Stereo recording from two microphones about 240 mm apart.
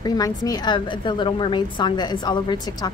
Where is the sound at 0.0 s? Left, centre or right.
Centre.